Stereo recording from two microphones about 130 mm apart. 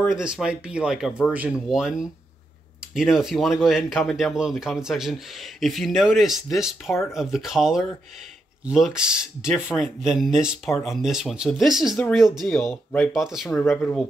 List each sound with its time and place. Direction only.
0.1 s speech: 5° right (ahead or behind)
6.9 s speech: 20° left (ahead or behind)
7.2 s speech: centre (ahead or behind)